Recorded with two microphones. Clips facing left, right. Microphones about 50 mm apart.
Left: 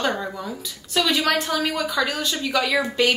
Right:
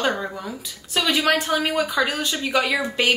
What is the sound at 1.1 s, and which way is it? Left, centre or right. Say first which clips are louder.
A woman's voice: right 3 dB; centre.